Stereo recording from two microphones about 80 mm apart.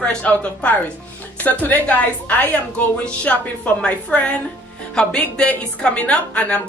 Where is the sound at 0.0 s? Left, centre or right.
Centre.